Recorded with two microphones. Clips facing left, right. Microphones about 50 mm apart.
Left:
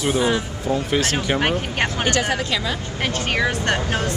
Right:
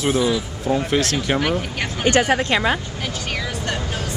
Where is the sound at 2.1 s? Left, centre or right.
Right.